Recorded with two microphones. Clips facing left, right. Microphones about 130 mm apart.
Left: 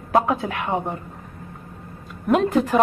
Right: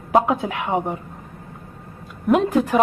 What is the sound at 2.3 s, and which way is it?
Speech, 10° right (ahead or behind).